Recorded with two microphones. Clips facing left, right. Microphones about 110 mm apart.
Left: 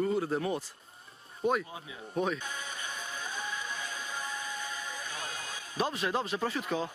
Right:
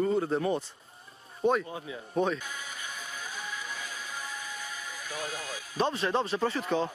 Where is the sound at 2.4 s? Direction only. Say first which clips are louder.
Left 1 dB; 25° left (ahead or behind).